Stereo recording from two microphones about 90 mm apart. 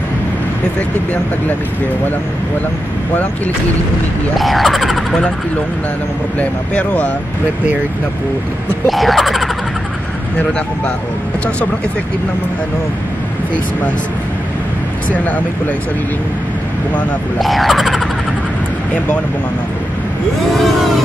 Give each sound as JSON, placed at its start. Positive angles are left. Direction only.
{"t": 4.4, "sound": "speech", "side_deg": 0}
{"t": 6.7, "sound": "speech", "side_deg": 15}
{"t": 8.8, "sound": "speech", "side_deg": 0}
{"t": 17.4, "sound": "speech", "side_deg": 0}
{"t": 20.5, "sound": "vehicle", "side_deg": 0}